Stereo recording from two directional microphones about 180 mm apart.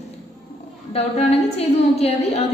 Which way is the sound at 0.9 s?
35° left (ahead or behind).